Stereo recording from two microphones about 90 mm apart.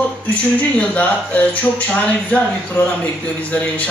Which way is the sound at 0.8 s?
15° left (ahead or behind).